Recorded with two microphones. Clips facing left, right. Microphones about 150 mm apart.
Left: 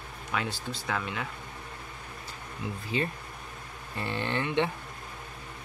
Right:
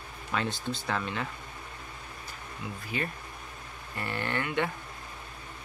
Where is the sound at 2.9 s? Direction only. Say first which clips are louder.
Left 3 dB; 25° left (ahead or behind).